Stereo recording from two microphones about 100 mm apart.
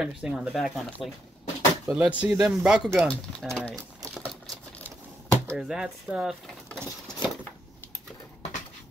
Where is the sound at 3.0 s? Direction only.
5° left (ahead or behind).